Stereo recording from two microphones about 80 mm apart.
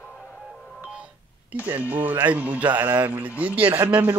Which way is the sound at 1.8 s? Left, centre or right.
Right.